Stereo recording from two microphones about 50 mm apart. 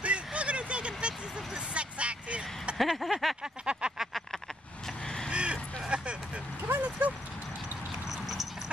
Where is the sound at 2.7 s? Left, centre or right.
Centre.